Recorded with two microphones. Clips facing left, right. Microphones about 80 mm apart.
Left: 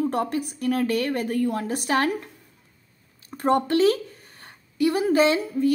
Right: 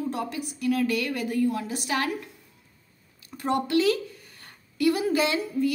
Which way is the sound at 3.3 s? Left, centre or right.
Left.